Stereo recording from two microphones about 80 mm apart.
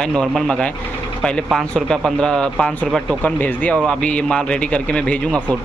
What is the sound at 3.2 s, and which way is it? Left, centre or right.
Speech, left.